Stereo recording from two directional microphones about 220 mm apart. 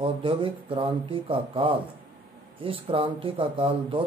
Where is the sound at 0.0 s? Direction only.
25° right (ahead or behind).